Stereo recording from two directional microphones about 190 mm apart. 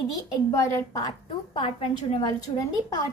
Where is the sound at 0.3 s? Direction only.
15° left (ahead or behind).